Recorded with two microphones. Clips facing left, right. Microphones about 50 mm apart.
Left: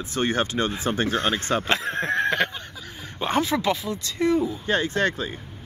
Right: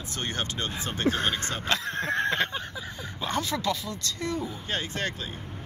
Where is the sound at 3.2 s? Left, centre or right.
Left.